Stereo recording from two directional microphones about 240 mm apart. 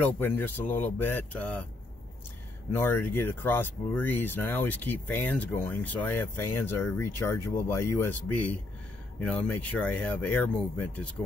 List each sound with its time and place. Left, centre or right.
0.0 s speech: centre
2.7 s speech: centre